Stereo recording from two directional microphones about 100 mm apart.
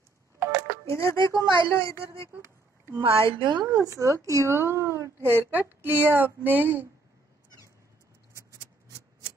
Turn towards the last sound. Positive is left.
turn(degrees=-30)  # may be behind; listen again after turning